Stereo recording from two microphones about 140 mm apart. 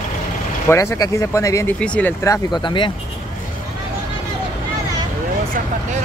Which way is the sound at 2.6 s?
35° left (ahead or behind).